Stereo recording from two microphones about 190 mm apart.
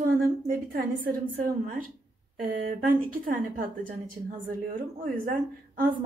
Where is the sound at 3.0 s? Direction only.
45° right (ahead or behind).